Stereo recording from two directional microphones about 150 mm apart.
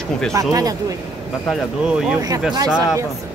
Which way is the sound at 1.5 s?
5° right (ahead or behind).